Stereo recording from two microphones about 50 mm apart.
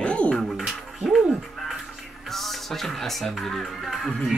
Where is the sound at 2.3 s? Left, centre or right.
Centre.